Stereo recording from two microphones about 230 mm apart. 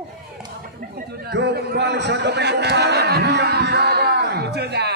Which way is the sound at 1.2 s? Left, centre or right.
Right.